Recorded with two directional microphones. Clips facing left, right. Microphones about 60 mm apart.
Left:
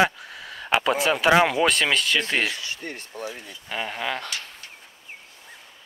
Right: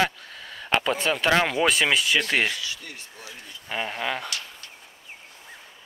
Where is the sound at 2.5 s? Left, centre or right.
Left.